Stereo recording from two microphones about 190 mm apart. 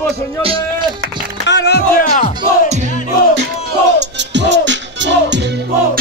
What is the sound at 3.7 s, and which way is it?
Music, 65° right (ahead or behind).